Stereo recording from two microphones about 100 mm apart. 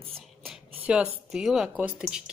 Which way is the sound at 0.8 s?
10° right (ahead or behind).